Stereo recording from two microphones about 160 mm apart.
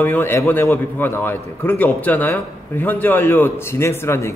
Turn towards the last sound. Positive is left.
turn(degrees=15)  # may be behind; listen again after turning